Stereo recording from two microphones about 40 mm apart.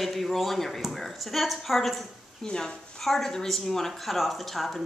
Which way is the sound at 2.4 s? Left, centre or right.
Centre.